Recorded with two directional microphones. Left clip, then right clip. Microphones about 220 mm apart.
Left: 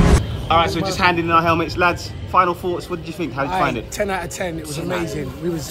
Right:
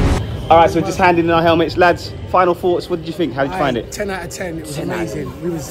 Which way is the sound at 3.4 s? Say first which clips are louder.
Right 2 dB; 5° left (ahead or behind).